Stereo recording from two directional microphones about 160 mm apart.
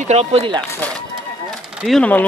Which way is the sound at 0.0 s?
40° right (ahead or behind).